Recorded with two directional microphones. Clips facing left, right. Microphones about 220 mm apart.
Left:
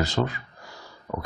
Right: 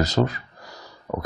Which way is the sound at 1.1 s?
50° right (ahead or behind).